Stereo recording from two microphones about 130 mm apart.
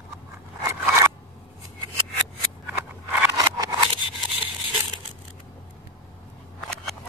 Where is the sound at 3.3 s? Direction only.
30° right (ahead or behind).